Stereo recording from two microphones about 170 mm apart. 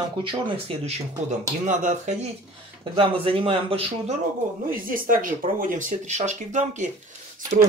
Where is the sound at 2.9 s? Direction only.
35° right (ahead or behind).